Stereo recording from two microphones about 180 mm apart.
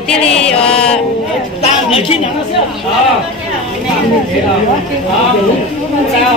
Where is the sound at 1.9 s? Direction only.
35° left (ahead or behind).